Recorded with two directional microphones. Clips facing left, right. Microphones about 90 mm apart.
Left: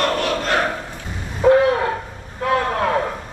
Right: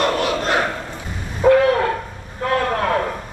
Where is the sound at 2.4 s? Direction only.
5° left (ahead or behind).